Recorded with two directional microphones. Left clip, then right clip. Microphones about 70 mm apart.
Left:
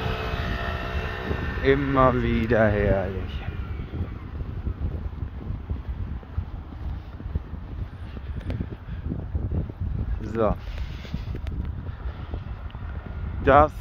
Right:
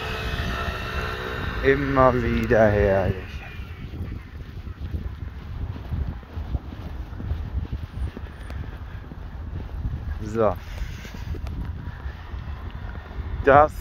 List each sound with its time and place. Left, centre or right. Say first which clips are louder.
0.0 s vehicle: even; right
0.5 s vehicle: right 1 dB; right
0.7 s vehicle: right 2 dB; centre
1.3 s a sound: right 1 dB; centre
1.6 s speech: right 1 dB; centre
2.0 s speech: right 2 dB; left
10.4 s speech: right 2 dB; centre
13.5 s speech: right 2 dB; centre